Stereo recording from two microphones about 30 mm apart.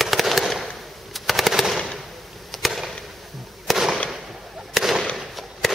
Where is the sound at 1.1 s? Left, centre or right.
Centre.